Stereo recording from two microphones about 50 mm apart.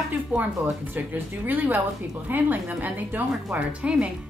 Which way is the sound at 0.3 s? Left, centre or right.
Right.